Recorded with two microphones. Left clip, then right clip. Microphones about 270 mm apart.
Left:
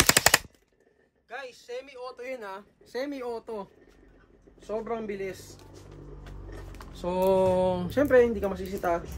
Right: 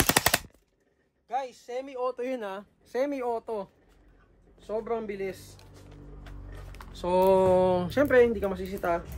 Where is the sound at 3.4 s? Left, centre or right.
Centre.